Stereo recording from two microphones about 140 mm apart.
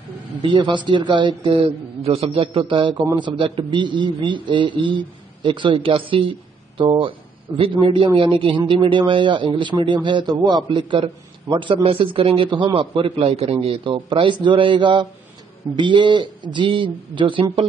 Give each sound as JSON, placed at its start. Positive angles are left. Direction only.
{"t": 0.4, "sound": "a man's voice", "side_deg": -35}